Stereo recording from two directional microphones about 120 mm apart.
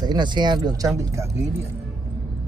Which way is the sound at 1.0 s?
25° right (ahead or behind).